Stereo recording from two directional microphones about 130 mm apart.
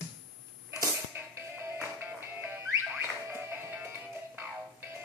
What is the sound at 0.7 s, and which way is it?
Music, 20° right (ahead or behind).